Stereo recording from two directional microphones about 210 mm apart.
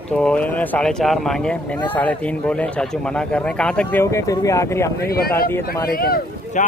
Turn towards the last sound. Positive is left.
turn(degrees=45)  # may be behind; listen again after turning